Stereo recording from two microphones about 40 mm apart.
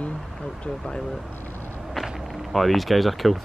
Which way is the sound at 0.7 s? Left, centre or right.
Centre.